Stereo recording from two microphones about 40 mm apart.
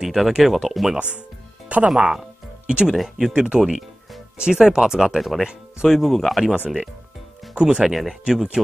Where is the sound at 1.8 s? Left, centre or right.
Centre.